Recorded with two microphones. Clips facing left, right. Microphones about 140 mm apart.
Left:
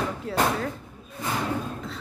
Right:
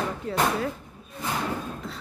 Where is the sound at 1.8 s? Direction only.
Centre (ahead or behind).